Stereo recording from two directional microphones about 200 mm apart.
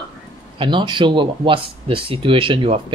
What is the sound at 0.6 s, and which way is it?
Speech, 25° right (ahead or behind).